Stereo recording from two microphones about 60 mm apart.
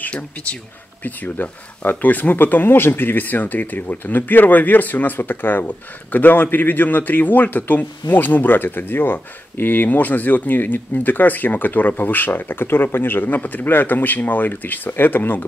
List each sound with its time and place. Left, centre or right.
0.0 s a man's voice: centre